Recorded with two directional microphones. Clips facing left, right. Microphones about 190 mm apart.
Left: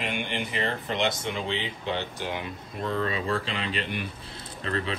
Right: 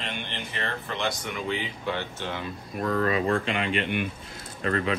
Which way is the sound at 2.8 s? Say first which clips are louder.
Right 3 dB; 45° right (ahead or behind).